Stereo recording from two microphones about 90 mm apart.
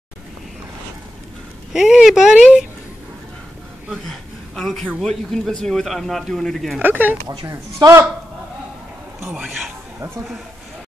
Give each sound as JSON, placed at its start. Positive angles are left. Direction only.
{"t": 1.7, "sound": "a man's voice", "side_deg": -5}
{"t": 4.0, "sound": "a man's voice", "side_deg": 5}
{"t": 6.8, "sound": "speech", "side_deg": -20}
{"t": 7.2, "sound": "speech", "side_deg": -40}
{"t": 9.3, "sound": "a man's voice", "side_deg": -10}